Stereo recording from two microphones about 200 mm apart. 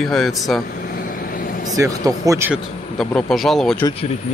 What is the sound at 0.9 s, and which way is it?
Vehicle, 50° left (ahead or behind).